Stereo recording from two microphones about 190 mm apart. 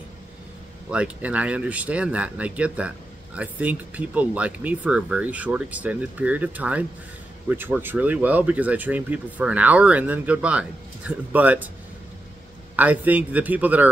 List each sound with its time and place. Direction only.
0.9 s speech: 5° right (ahead or behind)
12.7 s speech: 10° right (ahead or behind)